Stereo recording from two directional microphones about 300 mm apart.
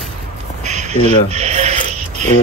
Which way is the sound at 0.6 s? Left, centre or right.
Right.